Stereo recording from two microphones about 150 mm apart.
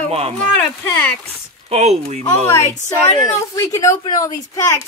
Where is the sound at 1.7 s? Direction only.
45° right (ahead or behind).